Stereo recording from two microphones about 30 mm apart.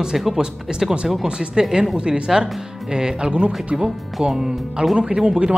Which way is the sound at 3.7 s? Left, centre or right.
Right.